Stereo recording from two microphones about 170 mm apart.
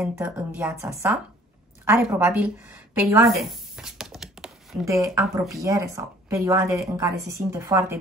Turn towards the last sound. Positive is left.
turn(degrees=-15)  # may be behind; listen again after turning